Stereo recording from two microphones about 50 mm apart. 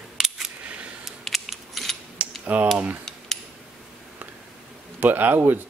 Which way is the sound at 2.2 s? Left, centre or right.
Right.